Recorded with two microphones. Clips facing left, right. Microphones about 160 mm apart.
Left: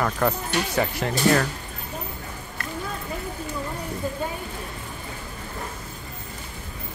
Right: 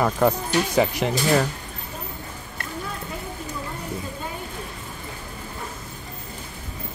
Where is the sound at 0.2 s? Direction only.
15° right (ahead or behind).